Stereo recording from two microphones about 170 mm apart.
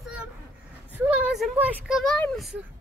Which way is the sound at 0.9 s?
10° right (ahead or behind).